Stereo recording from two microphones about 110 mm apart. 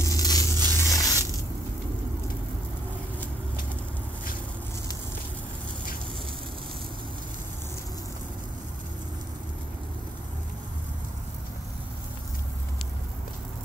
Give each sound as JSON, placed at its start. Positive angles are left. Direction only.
{"t": 0.0, "sound": "tearing", "side_deg": 35}
{"t": 0.6, "sound": "zipper", "side_deg": 30}